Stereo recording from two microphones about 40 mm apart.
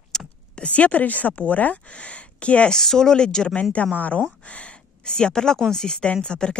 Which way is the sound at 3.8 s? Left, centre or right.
Left.